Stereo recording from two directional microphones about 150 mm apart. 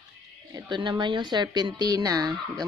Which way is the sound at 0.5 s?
30° right (ahead or behind).